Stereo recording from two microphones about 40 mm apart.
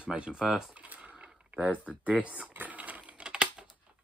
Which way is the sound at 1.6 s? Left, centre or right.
Right.